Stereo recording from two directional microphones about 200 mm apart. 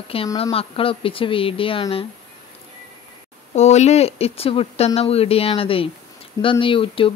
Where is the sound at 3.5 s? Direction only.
35° left (ahead or behind).